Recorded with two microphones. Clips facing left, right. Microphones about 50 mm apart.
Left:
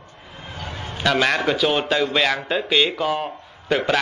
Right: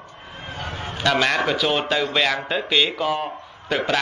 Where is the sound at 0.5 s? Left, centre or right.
Right.